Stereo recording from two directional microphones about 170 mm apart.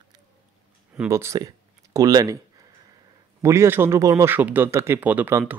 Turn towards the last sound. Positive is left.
turn(degrees=-10)  # may be behind; listen again after turning